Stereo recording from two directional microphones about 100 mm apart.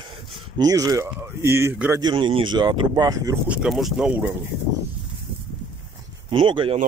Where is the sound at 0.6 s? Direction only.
35° right (ahead or behind).